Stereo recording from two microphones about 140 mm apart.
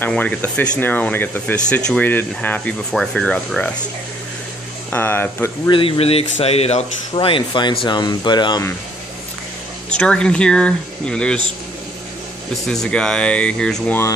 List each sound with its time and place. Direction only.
0.0 s speech: 10° left (ahead or behind)
4.9 s speech: 15° left (ahead or behind)
5.7 s speech: 40° left (ahead or behind)
9.8 s speech: 5° left (ahead or behind)
12.6 s speech: 5° left (ahead or behind)